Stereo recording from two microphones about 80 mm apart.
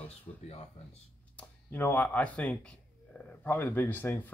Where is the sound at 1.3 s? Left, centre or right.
Left.